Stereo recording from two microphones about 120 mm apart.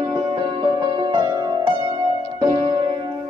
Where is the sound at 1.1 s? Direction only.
35° right (ahead or behind).